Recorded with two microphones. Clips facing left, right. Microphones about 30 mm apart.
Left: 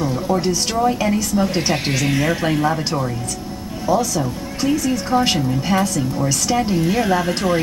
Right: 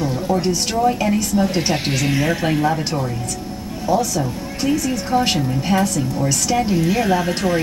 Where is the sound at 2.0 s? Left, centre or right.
Centre.